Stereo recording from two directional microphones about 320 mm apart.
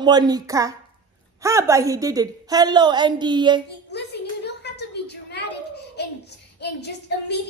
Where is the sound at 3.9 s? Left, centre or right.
Left.